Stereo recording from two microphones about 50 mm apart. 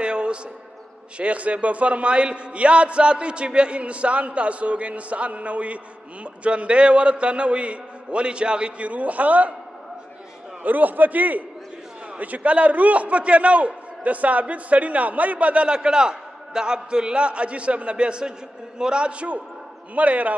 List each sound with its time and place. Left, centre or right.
0.0 s a sound: centre
1.1 s a man's voice: right
10.6 s a man's voice: right